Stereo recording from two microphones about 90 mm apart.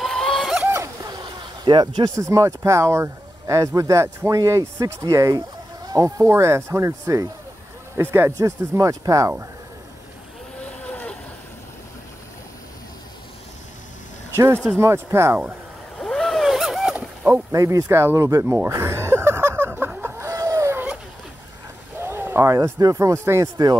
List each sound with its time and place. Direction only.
0.0 s a sound: 5° left (ahead or behind)
0.7 s a sound: 35° right (ahead or behind)
1.1 s a sound: 55° right (ahead or behind)
2.1 s speech: 35° right (ahead or behind)
7.9 s speech: 25° right (ahead or behind)
8.4 s speech: 35° right (ahead or behind)
10.6 s vehicle: 15° left (ahead or behind)
14.3 s speech: 30° right (ahead or behind)
16.0 s vehicle: 5° left (ahead or behind)
17.3 s speech: 35° right (ahead or behind)
18.4 s a sound: 25° right (ahead or behind)
20.0 s vehicle: 30° right (ahead or behind)
22.0 s vehicle: 25° right (ahead or behind)
22.5 s speech: 40° right (ahead or behind)